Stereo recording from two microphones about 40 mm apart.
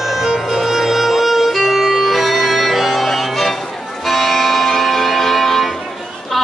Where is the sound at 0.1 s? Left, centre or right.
Centre.